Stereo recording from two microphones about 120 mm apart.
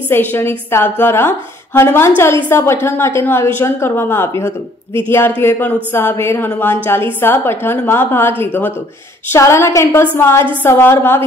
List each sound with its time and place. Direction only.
0.1 s a woman's voice: 15° left (ahead or behind)